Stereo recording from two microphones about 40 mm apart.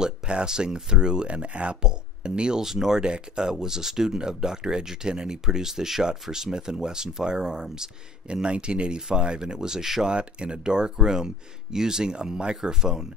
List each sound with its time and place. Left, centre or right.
0.0 s speech: right
2.6 s speech: centre
10.0 s speech: right